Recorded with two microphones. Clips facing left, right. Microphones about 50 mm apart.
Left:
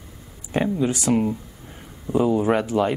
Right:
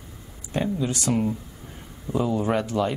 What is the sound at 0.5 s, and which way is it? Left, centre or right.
Speech, left.